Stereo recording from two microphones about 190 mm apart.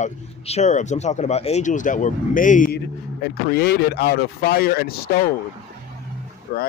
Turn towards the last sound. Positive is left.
turn(degrees=55)  # may be behind; listen again after turning